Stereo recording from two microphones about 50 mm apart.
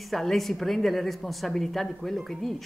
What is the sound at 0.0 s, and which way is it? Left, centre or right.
A woman's voice, centre.